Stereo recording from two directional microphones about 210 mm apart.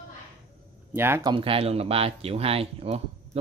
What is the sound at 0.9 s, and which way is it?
Speech, 10° right (ahead or behind).